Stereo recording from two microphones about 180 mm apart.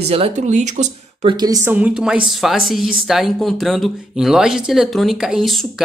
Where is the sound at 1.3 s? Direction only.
20° right (ahead or behind).